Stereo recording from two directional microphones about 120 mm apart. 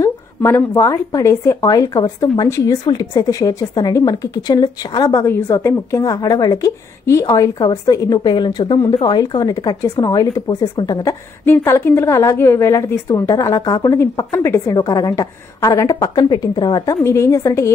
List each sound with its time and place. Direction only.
0.0 s a woman's voice: 20° left (ahead or behind)
11.4 s a woman's voice: 20° left (ahead or behind)
14.3 s a woman's voice: 20° left (ahead or behind)
14.8 s a woman's voice: 30° left (ahead or behind)
17.0 s a woman's voice: 25° left (ahead or behind)